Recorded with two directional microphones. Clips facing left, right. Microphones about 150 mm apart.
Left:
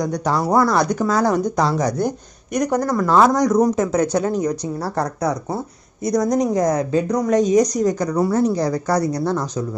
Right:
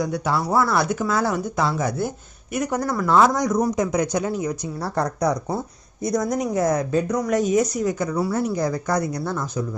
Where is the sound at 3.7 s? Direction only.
10° right (ahead or behind).